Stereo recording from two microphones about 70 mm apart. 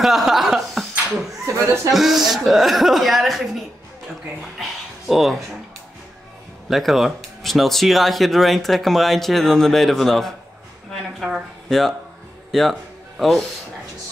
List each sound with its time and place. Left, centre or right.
0.0 s chuckle: centre
1.0 s a sound: right
2.0 s speech: centre
4.6 s a sound: centre
6.7 s speech: centre
11.1 s speech: centre
12.4 s music: centre
13.2 s speech: centre